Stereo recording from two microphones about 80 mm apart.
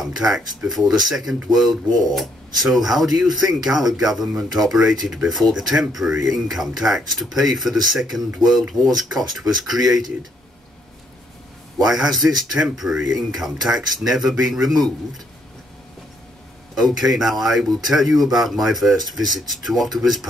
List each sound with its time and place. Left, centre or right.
0.0 s a sound: centre
0.7 s speech: centre
11.8 s speech: centre
16.7 s speech: centre